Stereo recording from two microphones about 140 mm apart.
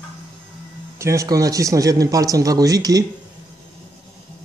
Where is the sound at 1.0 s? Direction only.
20° right (ahead or behind).